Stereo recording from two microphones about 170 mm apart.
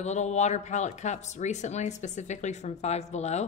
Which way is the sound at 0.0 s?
40° left (ahead or behind).